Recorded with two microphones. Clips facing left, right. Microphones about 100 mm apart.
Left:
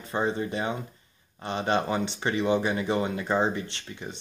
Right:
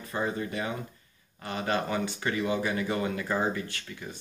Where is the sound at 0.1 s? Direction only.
25° left (ahead or behind).